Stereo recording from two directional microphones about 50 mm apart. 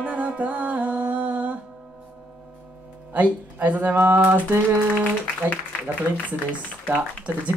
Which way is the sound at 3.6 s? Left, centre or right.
Right.